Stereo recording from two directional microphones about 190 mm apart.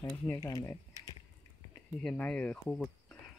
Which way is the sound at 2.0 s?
5° left (ahead or behind).